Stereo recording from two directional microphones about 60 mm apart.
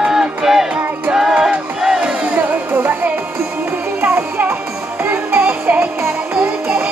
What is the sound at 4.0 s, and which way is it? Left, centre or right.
Music, right.